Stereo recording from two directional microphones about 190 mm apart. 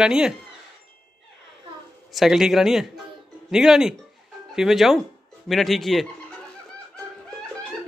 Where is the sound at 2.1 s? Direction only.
Centre (ahead or behind).